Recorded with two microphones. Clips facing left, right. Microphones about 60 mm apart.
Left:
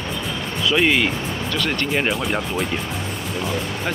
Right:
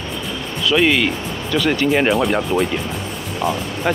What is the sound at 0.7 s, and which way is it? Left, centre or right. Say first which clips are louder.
Speech: right 2 dB; centre.